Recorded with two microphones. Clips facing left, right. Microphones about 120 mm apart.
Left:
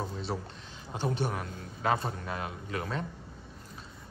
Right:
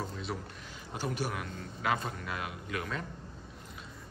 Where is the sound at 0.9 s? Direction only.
25° left (ahead or behind).